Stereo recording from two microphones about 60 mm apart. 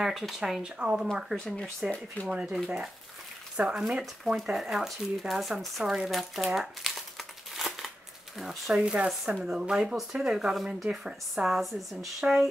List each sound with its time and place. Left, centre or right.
0.0 s speech: centre
1.3 s speech: centre
2.2 s speech: left
3.5 s speech: centre
4.5 s speech: centre
8.7 s speech: centre